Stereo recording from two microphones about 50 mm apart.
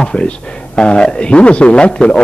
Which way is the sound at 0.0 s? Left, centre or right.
Centre.